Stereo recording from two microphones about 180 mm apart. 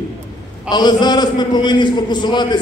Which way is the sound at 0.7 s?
25° left (ahead or behind).